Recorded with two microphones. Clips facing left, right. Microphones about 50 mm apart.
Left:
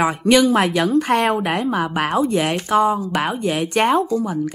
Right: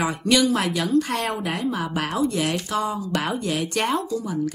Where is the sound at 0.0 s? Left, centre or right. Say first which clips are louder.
Left 5 dB; left.